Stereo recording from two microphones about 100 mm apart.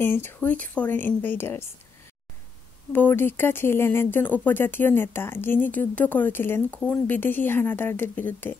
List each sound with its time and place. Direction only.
0.0 s speech: 20° left (ahead or behind)
2.9 s speech: 20° left (ahead or behind)